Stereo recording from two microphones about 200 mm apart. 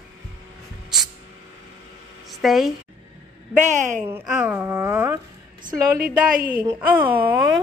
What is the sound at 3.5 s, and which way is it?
Speech, 40° right (ahead or behind).